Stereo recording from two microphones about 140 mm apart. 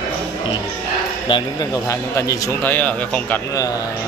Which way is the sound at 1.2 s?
30° left (ahead or behind).